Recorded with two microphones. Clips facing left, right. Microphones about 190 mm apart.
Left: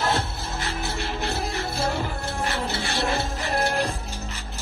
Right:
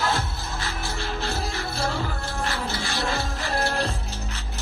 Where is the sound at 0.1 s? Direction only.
25° left (ahead or behind).